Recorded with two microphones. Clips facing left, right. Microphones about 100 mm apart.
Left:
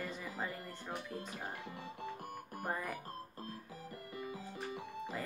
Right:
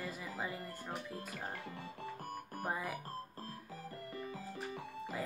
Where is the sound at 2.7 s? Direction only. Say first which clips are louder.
Even; 5° right (ahead or behind).